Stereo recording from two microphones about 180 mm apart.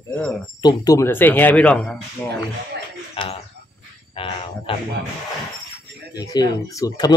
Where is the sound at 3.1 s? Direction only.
30° left (ahead or behind).